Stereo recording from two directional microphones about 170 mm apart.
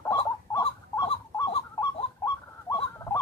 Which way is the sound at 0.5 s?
20° left (ahead or behind).